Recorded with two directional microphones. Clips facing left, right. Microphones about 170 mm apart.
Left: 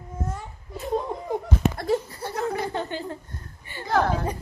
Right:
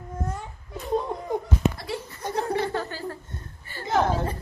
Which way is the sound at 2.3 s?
30° right (ahead or behind).